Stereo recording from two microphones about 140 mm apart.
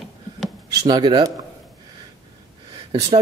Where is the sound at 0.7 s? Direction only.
30° right (ahead or behind).